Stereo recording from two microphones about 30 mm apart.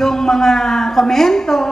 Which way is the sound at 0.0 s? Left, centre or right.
Centre.